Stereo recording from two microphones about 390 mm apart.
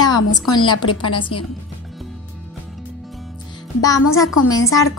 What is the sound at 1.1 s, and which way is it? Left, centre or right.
Speech, left.